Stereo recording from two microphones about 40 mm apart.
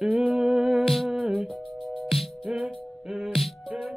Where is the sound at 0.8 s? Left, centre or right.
Centre.